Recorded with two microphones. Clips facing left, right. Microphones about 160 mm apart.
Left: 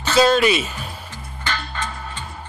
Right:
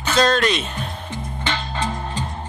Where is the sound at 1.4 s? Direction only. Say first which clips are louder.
Right 2 dB; 25° right (ahead or behind).